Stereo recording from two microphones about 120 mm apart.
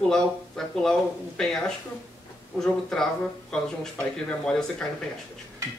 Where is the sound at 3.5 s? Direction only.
5° left (ahead or behind).